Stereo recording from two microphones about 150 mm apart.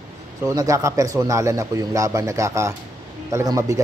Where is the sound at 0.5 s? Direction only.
20° right (ahead or behind).